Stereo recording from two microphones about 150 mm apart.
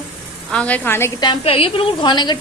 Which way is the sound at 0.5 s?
10° left (ahead or behind).